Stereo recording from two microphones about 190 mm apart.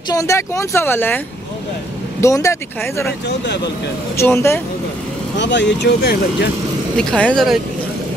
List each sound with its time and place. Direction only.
0.1 s speech: 15° left (ahead or behind)
2.2 s speech: 15° left (ahead or behind)
4.2 s speech: 15° left (ahead or behind)
5.4 s speech: 70° left (ahead or behind)
7.0 s speech: 5° left (ahead or behind)